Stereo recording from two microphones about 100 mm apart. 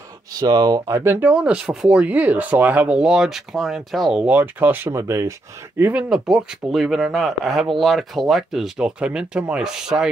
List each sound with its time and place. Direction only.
0.3 s speech: 40° right (ahead or behind)
1.0 s speech: 20° right (ahead or behind); by 4.3 s centre (ahead or behind)
4.3 s speech: 20° right (ahead or behind)
5.9 s speech: 5° right (ahead or behind)